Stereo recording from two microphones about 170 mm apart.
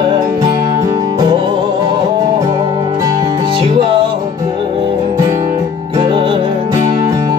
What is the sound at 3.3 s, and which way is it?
Music, 35° right (ahead or behind).